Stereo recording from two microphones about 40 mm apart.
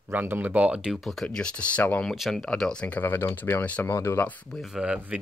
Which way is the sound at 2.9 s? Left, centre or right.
Left.